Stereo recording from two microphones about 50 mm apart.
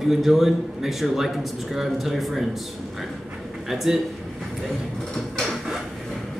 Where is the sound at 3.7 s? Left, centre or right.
Centre.